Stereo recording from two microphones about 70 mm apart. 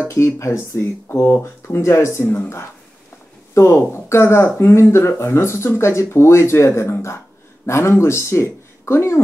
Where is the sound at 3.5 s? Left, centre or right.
Left.